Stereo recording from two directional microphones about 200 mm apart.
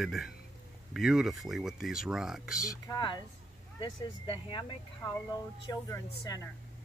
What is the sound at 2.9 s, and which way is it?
Speech, 20° left (ahead or behind).